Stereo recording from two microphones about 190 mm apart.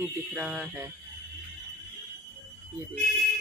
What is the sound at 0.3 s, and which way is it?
Speech, 5° right (ahead or behind).